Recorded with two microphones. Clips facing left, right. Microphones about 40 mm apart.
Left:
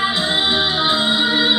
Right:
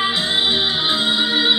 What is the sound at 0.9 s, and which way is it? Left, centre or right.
Music, centre.